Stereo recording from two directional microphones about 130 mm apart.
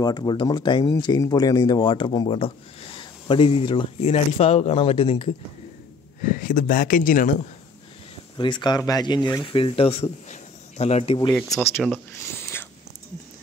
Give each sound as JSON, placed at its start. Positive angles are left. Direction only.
{"t": 0.0, "sound": "speech", "side_deg": 35}
{"t": 6.2, "sound": "speech", "side_deg": 90}
{"t": 8.4, "sound": "speech", "side_deg": 35}
{"t": 10.3, "sound": "a sound", "side_deg": 55}
{"t": 11.3, "sound": "speech", "side_deg": 5}
{"t": 11.9, "sound": "a sound", "side_deg": 15}